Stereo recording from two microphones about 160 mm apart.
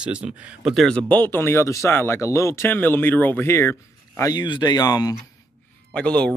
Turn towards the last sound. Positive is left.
turn(degrees=5)  # may be behind; listen again after turning